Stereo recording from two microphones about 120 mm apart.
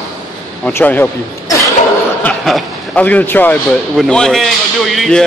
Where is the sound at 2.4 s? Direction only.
Centre (ahead or behind).